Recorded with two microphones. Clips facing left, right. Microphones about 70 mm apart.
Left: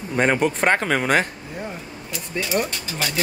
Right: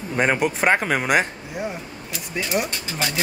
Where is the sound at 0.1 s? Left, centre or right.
Centre.